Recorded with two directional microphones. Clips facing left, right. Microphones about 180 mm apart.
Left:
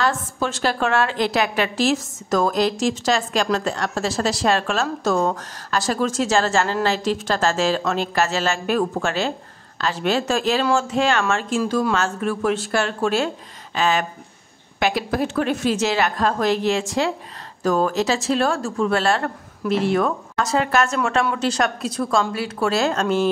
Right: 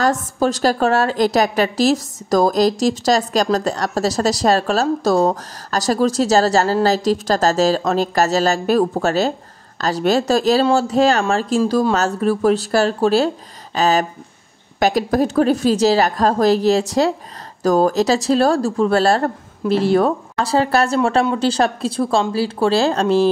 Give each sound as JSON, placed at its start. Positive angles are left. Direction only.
{"t": 0.0, "sound": "a woman's voice", "side_deg": -40}